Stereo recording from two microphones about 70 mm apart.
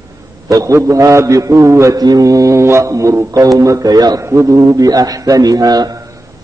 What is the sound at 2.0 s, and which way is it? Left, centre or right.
Speech, right.